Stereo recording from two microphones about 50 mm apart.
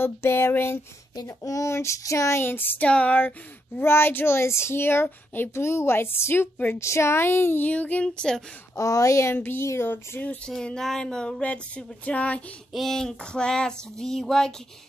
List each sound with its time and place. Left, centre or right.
0.0 s a woman's voice: left
1.2 s child singing: left
2.4 s speech: left
2.9 s a sound: left
3.2 s speech: left
3.8 s speech: left
4.4 s speech: left
5.5 s a woman's voice: left
6.8 s speech: left
7.6 s a sound: left
8.7 s speech: left
9.3 s speech: left
10.6 s a sound: centre; by 12.4 s left
12.7 s a sound: centre